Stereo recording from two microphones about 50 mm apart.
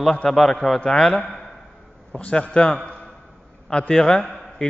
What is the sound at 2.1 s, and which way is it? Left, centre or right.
Speech, left.